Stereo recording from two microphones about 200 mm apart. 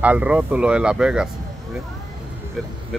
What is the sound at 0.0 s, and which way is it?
Speech, 5° right (ahead or behind).